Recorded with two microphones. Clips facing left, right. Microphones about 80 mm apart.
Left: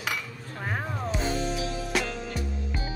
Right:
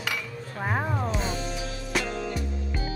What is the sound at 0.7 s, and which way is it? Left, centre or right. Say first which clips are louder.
Music: right 4 dB; centre.